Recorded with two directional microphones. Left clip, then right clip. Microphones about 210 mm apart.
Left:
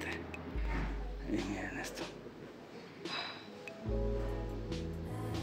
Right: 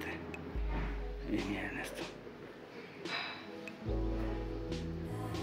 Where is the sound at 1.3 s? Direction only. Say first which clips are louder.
Right 1 dB; centre (ahead or behind).